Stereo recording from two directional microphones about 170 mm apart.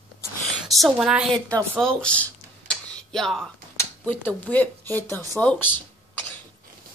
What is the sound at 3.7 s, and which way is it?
Speech, 10° left (ahead or behind).